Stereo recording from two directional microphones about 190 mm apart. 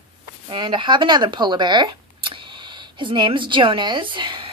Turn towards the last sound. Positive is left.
turn(degrees=-25)  # may be behind; listen again after turning